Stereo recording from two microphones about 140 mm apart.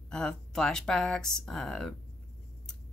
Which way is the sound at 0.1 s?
5° left (ahead or behind).